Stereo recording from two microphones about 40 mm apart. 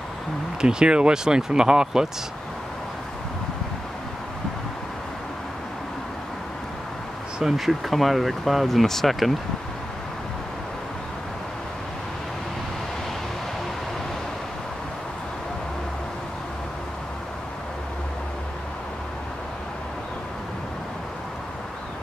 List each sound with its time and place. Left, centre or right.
0.6 s speech: centre
7.5 s speech: centre